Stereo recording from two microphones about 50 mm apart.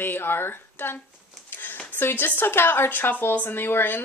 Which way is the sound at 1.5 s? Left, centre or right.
Left.